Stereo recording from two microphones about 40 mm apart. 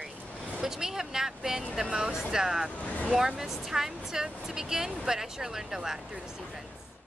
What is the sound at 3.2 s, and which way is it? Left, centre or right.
Speech, centre.